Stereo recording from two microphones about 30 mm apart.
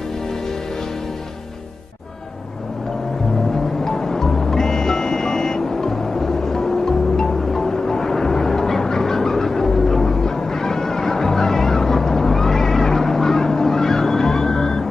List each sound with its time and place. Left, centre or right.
3.5 s music: centre